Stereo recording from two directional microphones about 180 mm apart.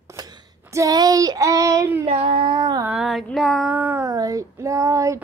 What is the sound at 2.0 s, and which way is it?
Child singing, 35° right (ahead or behind).